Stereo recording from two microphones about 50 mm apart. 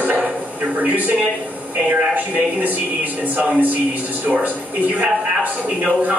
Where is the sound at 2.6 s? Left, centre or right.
Right.